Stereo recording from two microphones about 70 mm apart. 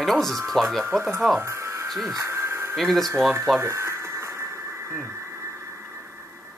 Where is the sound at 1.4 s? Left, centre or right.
Right.